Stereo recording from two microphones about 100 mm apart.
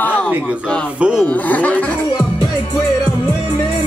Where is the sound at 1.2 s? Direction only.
15° left (ahead or behind).